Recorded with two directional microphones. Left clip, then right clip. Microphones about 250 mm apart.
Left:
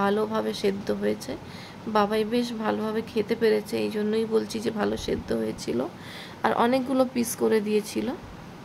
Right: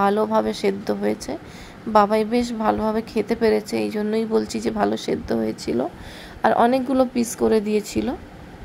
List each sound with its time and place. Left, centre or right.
0.0 s a woman's voice: centre